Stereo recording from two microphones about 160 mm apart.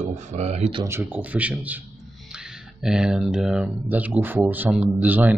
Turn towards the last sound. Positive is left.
turn(degrees=-10)  # may be behind; listen again after turning